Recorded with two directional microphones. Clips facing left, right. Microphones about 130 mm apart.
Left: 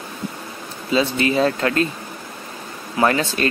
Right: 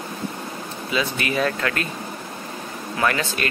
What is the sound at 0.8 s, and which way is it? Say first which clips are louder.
Speech: left 6 dB; 30° left (ahead or behind).